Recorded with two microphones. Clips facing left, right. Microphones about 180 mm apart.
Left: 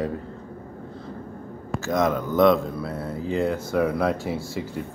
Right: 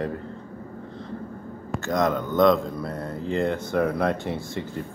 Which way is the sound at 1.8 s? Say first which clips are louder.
Left 1 dB; 5° left (ahead or behind).